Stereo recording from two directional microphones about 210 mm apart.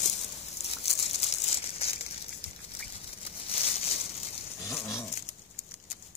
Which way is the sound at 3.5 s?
30° left (ahead or behind).